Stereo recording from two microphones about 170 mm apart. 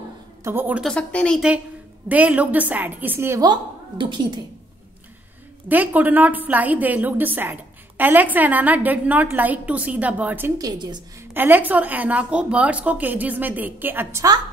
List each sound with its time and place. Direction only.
0.4 s speech: 15° right (ahead or behind)
0.8 s a woman's voice: 5° left (ahead or behind)
2.0 s speech: 10° right (ahead or behind)
4.0 s a woman's voice: 25° right (ahead or behind)
5.7 s speech: 10° right (ahead or behind)
10.7 s a woman's voice: 25° right (ahead or behind)
11.3 s speech: 10° right (ahead or behind)